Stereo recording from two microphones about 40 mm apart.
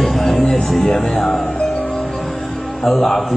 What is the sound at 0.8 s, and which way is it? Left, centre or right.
Speech, centre.